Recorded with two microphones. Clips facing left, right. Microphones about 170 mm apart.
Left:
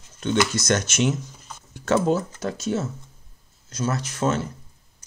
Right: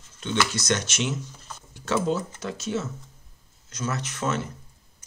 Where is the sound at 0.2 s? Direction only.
45° left (ahead or behind).